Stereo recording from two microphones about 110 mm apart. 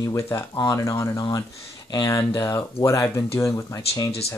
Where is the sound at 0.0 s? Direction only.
25° left (ahead or behind).